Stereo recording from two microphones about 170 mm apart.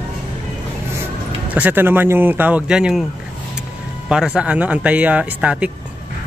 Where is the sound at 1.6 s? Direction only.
10° right (ahead or behind).